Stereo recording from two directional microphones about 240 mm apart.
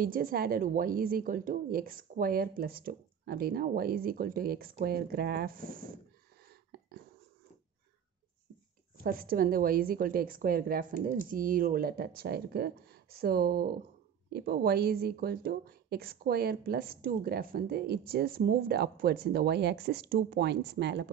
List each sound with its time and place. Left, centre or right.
0.0 s speech: right
6.5 s a sound: right
9.0 s speech: right